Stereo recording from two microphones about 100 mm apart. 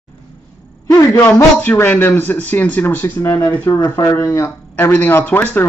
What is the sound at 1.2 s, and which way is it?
A man's voice, 20° left (ahead or behind).